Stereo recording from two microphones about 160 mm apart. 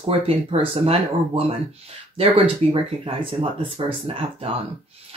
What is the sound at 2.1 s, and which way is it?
Speech, 35° right (ahead or behind).